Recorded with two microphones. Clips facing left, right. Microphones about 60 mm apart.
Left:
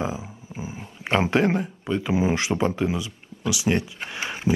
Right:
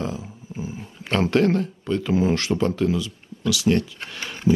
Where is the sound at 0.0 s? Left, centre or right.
Centre.